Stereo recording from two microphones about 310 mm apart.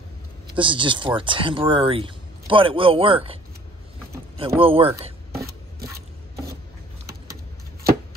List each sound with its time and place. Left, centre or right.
0.6 s speech: centre
4.4 s speech: centre